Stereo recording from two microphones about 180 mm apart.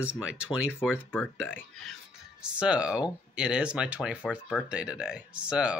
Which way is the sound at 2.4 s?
5° right (ahead or behind).